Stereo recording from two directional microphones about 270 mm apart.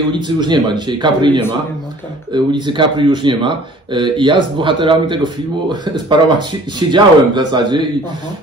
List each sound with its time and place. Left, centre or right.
0.1 s speech: centre